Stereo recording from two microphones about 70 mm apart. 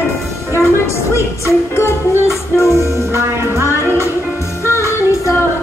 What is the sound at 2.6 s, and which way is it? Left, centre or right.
Music, right.